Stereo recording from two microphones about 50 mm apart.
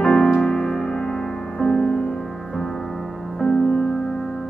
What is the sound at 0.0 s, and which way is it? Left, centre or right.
Music, centre.